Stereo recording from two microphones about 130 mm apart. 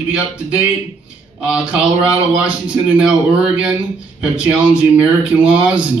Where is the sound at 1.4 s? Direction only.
10° right (ahead or behind).